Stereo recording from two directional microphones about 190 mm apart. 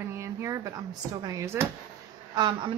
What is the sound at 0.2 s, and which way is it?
Speech, 15° right (ahead or behind).